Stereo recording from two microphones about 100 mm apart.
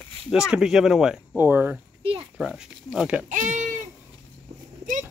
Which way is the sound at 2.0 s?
65° right (ahead or behind).